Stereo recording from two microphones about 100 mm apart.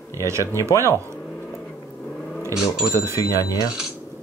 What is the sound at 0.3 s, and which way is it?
Speech, 30° right (ahead or behind).